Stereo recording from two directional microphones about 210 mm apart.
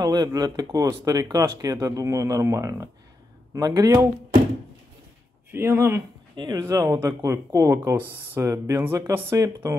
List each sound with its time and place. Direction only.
0.0 s speech: 20° right (ahead or behind)
5.5 s speech: 10° right (ahead or behind)